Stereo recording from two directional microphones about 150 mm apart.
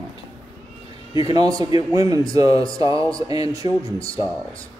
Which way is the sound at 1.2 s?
25° right (ahead or behind).